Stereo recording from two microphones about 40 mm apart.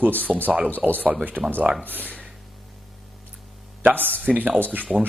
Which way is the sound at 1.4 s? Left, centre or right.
Centre.